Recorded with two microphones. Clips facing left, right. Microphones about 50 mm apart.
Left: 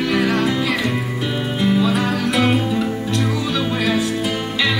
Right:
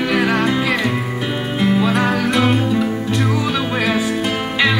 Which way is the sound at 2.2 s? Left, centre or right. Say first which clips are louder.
Right 1 dB; centre.